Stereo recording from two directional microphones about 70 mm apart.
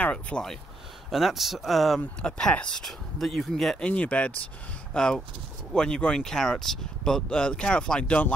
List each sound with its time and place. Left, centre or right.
0.0 s speech: centre
1.1 s speech: centre
2.0 s speech: centre
3.8 s speech: centre
4.9 s speech: centre